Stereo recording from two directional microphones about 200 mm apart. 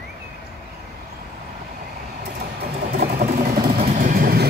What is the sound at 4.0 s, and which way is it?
Vehicle, 45° right (ahead or behind).